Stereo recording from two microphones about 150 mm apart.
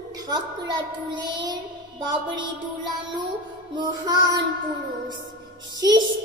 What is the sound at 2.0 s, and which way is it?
Music, 30° right (ahead or behind).